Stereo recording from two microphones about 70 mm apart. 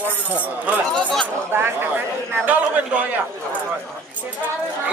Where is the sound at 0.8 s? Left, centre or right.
Centre.